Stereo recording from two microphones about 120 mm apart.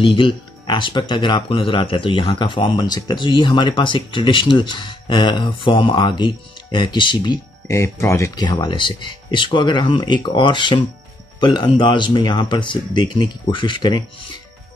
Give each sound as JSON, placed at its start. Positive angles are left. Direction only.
{"t": 0.0, "sound": "speech", "side_deg": 45}
{"t": 7.6, "sound": "speech", "side_deg": 25}
{"t": 8.4, "sound": "speech", "side_deg": 35}